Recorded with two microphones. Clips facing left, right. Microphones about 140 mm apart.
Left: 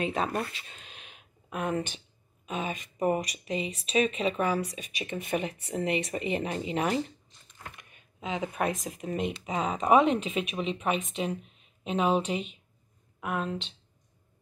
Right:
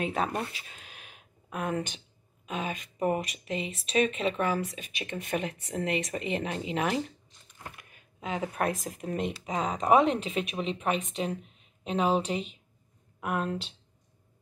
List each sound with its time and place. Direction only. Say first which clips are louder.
0.0 s speech: left 1 dB; centre (ahead or behind)
8.4 s speech: even; 15° left (ahead or behind)
8.9 s speech: left 1 dB; 5° left (ahead or behind)